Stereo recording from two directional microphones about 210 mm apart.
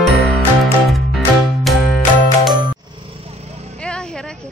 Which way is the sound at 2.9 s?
25° right (ahead or behind).